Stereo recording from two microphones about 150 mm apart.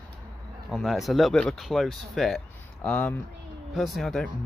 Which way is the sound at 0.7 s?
Centre (ahead or behind).